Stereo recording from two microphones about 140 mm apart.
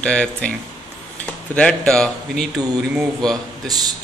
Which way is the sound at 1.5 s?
5° left (ahead or behind).